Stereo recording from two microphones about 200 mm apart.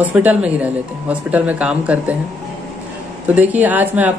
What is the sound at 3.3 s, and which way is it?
Speech, 10° right (ahead or behind).